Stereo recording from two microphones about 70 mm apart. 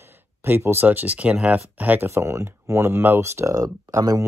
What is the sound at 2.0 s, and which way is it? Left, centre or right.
Speech, right.